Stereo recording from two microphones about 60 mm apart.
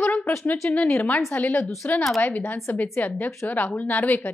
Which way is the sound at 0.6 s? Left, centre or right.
Left.